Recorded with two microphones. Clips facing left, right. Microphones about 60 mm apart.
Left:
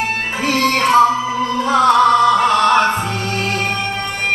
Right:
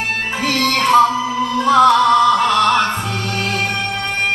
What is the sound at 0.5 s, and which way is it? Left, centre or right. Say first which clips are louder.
Music: left 1 dB; left.